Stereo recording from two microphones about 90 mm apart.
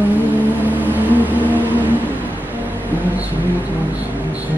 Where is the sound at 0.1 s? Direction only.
20° right (ahead or behind).